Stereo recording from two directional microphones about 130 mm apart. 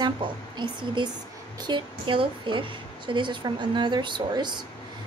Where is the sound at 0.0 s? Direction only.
35° right (ahead or behind).